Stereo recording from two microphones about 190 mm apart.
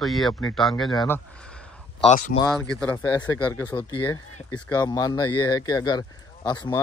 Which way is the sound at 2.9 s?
20° left (ahead or behind).